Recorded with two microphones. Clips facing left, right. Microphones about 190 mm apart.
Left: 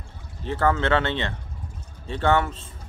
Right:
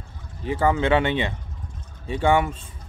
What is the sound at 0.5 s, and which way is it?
Speech, 10° right (ahead or behind).